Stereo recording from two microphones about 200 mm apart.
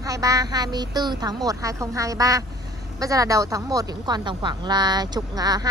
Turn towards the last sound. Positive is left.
turn(degrees=-20)  # may be behind; listen again after turning